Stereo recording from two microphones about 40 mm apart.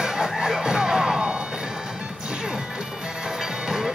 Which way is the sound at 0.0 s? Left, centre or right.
Centre.